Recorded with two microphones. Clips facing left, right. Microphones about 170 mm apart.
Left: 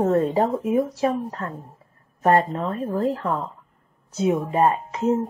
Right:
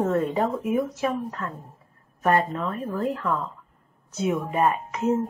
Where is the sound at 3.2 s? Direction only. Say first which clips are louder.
Left 1 dB; 40° left (ahead or behind).